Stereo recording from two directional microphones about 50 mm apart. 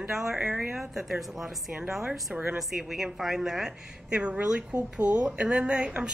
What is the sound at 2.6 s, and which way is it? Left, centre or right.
Speech, centre.